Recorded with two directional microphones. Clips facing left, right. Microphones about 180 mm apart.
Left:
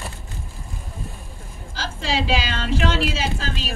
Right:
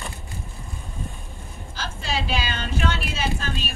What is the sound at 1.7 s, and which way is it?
Speech, 90° left.